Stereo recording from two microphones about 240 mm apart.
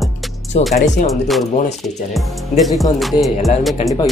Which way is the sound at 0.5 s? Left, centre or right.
Left.